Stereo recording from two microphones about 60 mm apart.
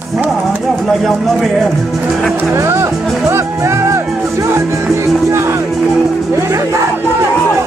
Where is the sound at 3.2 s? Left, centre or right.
Right.